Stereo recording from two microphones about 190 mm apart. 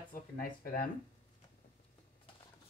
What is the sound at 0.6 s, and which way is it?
Speech, 50° left (ahead or behind).